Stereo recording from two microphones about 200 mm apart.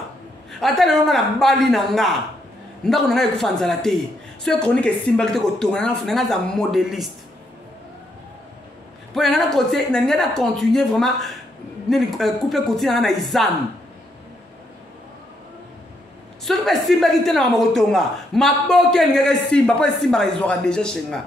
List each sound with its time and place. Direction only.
0.5 s a woman's voice: centre (ahead or behind)
9.1 s a woman's voice: centre (ahead or behind)
16.4 s a woman's voice: centre (ahead or behind)